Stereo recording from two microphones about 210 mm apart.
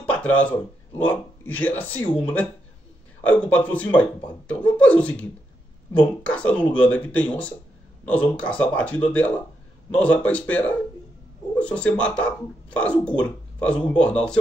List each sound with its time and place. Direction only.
0.1 s a man's voice: 5° left (ahead or behind)